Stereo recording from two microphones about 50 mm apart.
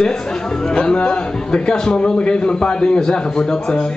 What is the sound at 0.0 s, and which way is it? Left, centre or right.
Speech, centre.